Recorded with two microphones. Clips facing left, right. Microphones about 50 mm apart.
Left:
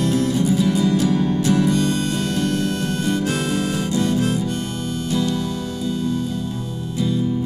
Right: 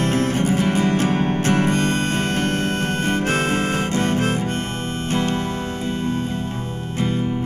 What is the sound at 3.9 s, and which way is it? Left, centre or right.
Harmonica, right.